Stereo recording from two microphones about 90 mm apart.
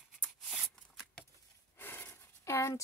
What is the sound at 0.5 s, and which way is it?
Shuffling cards, 5° right (ahead or behind).